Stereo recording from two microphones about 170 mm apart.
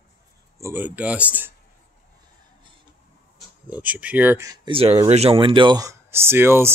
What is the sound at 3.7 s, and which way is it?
Speech, 10° right (ahead or behind).